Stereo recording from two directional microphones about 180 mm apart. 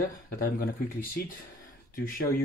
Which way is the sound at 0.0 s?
55° left (ahead or behind).